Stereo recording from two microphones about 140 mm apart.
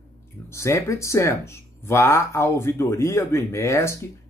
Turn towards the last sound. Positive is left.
turn(degrees=20)  # may be behind; listen again after turning